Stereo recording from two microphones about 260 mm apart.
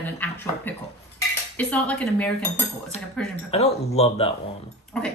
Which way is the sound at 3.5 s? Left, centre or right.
Left.